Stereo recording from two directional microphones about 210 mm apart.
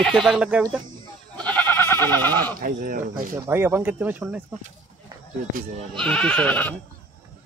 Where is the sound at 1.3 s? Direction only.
5° left (ahead or behind).